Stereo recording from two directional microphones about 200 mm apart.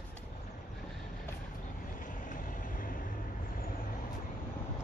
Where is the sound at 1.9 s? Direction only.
40° left (ahead or behind).